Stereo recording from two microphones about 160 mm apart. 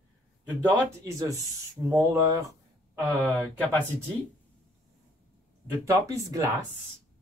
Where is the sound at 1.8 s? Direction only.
20° right (ahead or behind).